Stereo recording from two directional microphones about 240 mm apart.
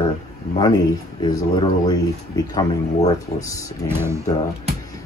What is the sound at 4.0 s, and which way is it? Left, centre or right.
Speech, centre.